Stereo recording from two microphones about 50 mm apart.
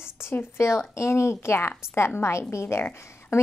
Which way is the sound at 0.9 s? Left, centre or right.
Left.